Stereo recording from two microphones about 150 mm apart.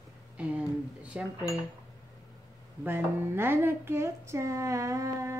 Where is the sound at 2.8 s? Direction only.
15° right (ahead or behind).